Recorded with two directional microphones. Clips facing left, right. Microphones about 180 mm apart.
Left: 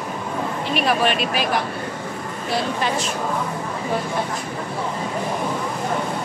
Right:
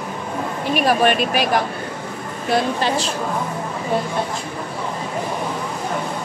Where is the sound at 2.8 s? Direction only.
30° right (ahead or behind).